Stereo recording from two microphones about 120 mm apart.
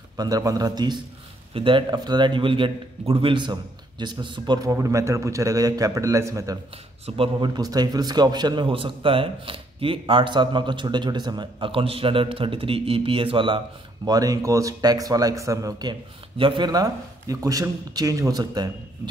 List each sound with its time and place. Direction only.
0.2 s a man's voice: 30° right (ahead or behind)
14.0 s speech: 30° right (ahead or behind)